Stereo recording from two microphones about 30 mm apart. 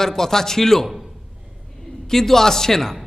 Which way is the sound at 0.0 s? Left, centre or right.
Centre.